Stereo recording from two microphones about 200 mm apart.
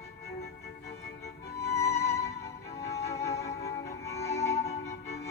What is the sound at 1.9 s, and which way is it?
Music, 30° left (ahead or behind).